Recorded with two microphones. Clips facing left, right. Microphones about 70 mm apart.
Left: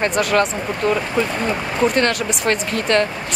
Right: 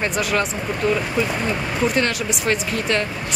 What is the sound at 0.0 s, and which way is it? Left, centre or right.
Speech, centre.